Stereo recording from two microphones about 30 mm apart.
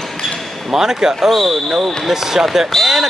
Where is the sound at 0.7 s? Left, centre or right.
Centre.